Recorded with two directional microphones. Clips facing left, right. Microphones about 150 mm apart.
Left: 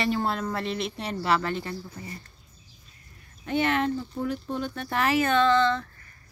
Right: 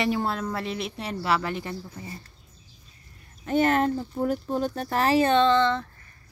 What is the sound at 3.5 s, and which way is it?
Speech, 40° right (ahead or behind).